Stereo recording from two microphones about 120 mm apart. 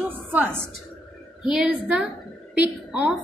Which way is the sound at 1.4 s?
5° right (ahead or behind).